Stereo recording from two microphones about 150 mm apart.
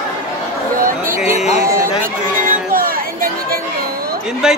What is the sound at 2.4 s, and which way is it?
Music, 70° right (ahead or behind).